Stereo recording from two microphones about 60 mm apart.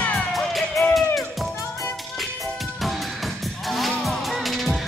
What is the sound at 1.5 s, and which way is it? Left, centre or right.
Music, left.